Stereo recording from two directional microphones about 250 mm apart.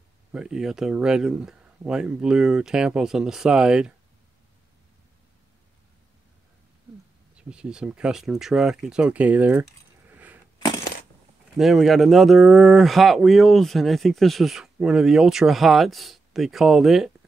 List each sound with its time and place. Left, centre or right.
0.3 s speech: centre
7.4 s speech: centre
11.5 s speech: centre